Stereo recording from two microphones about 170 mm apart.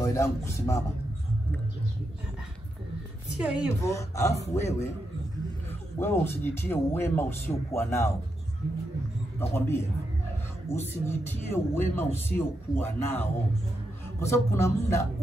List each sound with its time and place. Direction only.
0.0 s speech: 15° left (ahead or behind)
3.3 s a woman's voice: 5° right (ahead or behind)
3.8 s speech: 20° left (ahead or behind)
5.9 s speech: 15° left (ahead or behind)
9.5 s speech: 15° left (ahead or behind)